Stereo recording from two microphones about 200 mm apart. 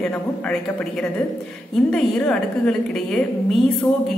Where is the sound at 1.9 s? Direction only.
5° left (ahead or behind).